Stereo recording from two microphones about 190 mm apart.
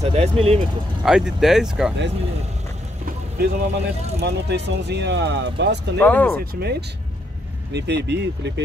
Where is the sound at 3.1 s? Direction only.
55° right (ahead or behind).